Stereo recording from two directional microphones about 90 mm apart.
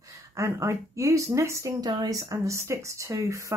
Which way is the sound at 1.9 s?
45° right (ahead or behind).